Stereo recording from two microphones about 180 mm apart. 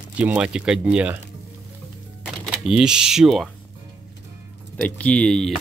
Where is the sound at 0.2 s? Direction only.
5° right (ahead or behind).